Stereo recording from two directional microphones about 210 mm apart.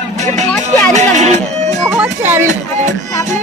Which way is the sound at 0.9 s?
35° right (ahead or behind).